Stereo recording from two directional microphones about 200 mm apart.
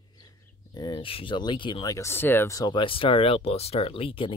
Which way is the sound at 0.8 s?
25° left (ahead or behind).